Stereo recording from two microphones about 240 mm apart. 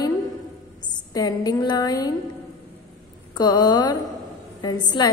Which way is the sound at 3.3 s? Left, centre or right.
Centre.